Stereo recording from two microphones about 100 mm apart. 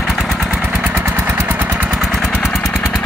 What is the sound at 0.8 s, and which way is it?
Vehicle, 20° right (ahead or behind).